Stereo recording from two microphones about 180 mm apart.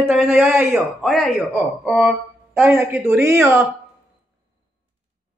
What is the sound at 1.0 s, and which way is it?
A man's voice, centre (ahead or behind).